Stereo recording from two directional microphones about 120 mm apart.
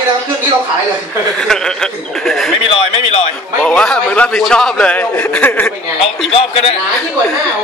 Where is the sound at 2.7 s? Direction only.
55° left (ahead or behind).